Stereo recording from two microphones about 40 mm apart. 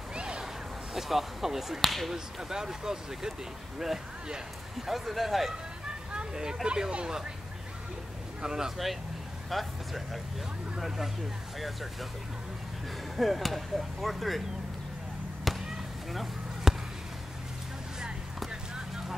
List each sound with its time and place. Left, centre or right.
0.1 s a sound: right
0.9 s speech: centre
2.1 s speech: centre
4.7 s speech: centre
5.5 s speech: centre
8.4 s speech: centre
9.5 s speech: centre
11.6 s speech: centre
13.1 s speech: centre
15.5 s basketball bounce: centre
16.7 s basketball bounce: centre